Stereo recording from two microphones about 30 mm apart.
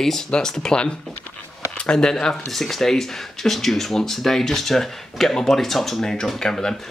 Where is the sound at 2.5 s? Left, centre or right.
Centre.